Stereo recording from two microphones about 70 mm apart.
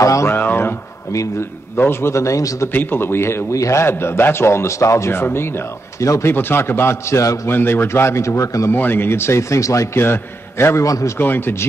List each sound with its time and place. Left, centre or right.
0.0 s a man's voice: left
0.3 s a sound: left
1.8 s a man's voice: left
2.7 s speech: left
3.5 s a man's voice: left
3.8 s speech: left
6.3 s speech: left
7.4 s speech: left
8.7 s speech: left
9.9 s speech: left
10.9 s a man's voice: left
11.1 s speech: left